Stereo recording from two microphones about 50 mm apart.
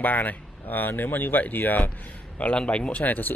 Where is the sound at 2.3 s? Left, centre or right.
Left.